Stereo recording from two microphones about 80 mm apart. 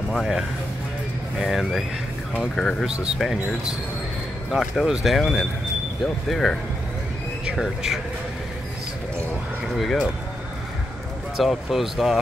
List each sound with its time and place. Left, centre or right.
0.1 s speech: centre
4.5 s speech: centre
7.4 s speech: centre
9.8 s speech: centre
11.3 s speech: centre